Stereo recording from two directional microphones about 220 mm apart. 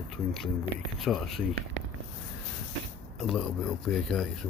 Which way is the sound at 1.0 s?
Centre (ahead or behind).